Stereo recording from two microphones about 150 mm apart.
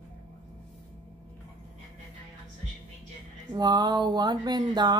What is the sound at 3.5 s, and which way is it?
Speech, 25° right (ahead or behind).